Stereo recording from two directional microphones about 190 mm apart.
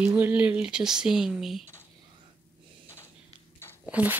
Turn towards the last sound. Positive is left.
turn(degrees=-10)  # may be behind; listen again after turning